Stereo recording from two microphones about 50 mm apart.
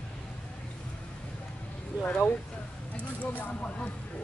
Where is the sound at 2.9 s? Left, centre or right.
Left.